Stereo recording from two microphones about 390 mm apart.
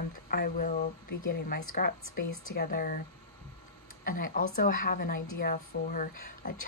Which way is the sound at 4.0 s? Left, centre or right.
Left.